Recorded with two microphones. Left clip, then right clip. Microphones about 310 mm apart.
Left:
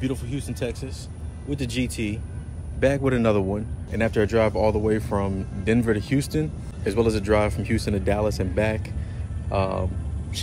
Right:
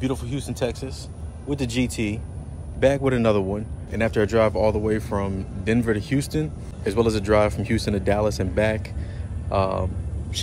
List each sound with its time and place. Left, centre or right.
0.0 s speech: centre
2.8 s speech: centre